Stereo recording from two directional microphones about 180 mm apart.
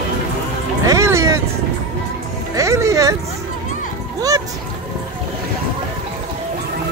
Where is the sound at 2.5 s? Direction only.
15° right (ahead or behind).